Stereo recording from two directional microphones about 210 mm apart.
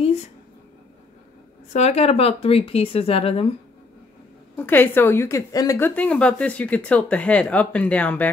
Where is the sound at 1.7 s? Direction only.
30° left (ahead or behind).